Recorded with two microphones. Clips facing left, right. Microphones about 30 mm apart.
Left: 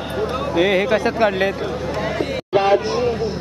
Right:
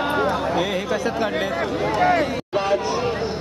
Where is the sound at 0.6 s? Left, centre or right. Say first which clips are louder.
Left 6 dB; left.